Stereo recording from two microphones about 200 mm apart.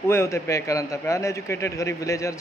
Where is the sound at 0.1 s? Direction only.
15° left (ahead or behind).